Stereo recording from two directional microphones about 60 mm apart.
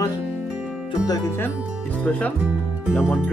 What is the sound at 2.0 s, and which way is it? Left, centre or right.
Speech, left.